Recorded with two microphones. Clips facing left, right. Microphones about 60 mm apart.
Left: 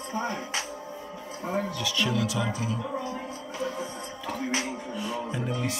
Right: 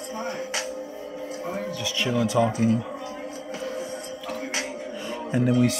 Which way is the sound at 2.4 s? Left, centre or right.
Right.